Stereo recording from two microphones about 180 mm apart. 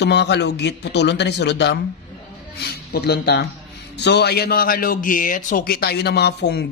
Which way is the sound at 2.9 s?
60° left (ahead or behind).